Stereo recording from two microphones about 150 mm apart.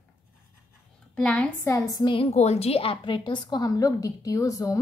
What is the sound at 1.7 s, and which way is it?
Speech, 20° left (ahead or behind).